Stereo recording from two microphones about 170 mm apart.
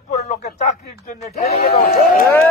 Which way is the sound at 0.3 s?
40° left (ahead or behind).